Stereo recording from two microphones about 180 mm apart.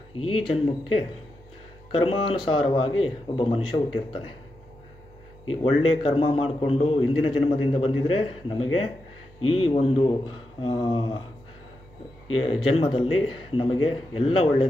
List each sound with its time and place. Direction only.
0.2 s a man's voice: 30° left (ahead or behind)
1.9 s a man's voice: 30° left (ahead or behind)
5.6 s a man's voice: 30° left (ahead or behind)
12.3 s a man's voice: 30° left (ahead or behind)